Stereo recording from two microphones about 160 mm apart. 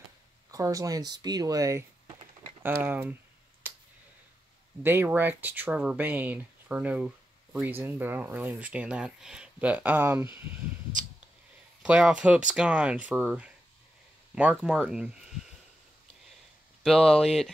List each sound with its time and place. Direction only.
0.5 s speech: 20° right (ahead or behind)
3.6 s a sound: 10° right (ahead or behind)
4.8 s speech: 15° right (ahead or behind)
11.8 s speech: 5° right (ahead or behind)
16.8 s speech: centre (ahead or behind)